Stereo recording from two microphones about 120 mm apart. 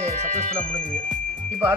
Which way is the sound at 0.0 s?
85° right.